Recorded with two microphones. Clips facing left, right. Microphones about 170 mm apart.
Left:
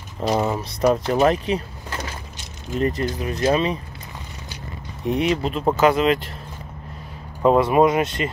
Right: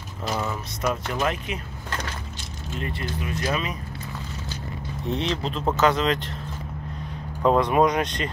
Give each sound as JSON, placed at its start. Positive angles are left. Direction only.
{"t": 0.3, "sound": "speech", "side_deg": 35}
{"t": 1.9, "sound": "a sound", "side_deg": 10}
{"t": 2.8, "sound": "speech", "side_deg": 40}
{"t": 5.0, "sound": "speech", "side_deg": 10}
{"t": 7.4, "sound": "speech", "side_deg": 5}